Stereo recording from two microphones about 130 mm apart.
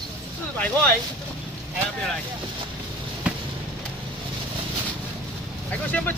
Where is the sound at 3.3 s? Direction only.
10° right (ahead or behind).